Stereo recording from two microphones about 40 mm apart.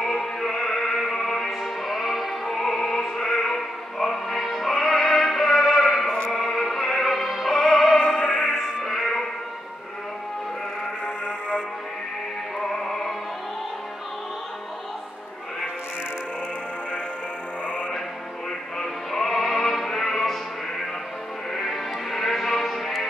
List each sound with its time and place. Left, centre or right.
0.0 s music: centre
8.2 s music: left
8.8 s music: centre
11.2 s music: left
12.5 s music: centre
18.8 s music: centre
21.5 s music: centre